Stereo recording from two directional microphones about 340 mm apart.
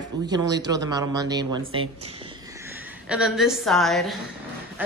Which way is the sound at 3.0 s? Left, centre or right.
Centre.